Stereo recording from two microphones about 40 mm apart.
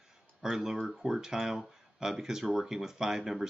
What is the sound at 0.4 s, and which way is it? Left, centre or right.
Speech, centre.